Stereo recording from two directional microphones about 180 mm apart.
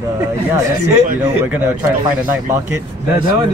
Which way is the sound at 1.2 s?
10° right (ahead or behind).